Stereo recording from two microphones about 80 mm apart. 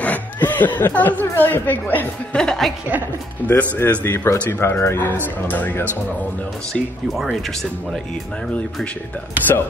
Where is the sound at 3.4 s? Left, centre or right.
Left.